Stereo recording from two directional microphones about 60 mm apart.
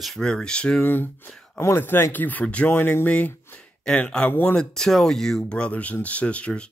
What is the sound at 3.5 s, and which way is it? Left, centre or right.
Speech, centre.